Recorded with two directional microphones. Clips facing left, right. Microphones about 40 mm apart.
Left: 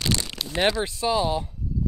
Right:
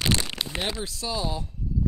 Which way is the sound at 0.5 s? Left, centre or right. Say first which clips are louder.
Left 10 dB; left.